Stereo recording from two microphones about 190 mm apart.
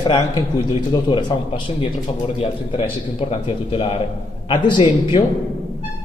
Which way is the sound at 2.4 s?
25° left (ahead or behind).